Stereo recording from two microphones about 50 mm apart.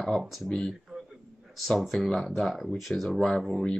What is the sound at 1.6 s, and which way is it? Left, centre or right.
Speech, centre.